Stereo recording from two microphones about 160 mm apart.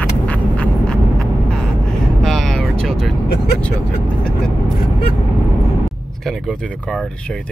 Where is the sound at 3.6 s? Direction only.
10° left (ahead or behind).